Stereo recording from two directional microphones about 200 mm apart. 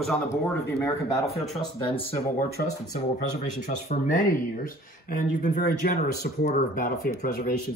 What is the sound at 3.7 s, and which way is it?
Speech, 40° left (ahead or behind).